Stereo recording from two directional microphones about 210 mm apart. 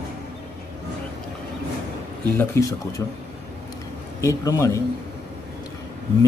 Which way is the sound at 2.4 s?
15° left (ahead or behind).